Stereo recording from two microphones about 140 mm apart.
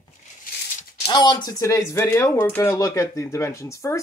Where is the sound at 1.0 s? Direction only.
30° left (ahead or behind).